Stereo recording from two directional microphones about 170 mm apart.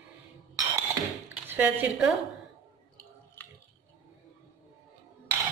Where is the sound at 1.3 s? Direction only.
10° right (ahead or behind).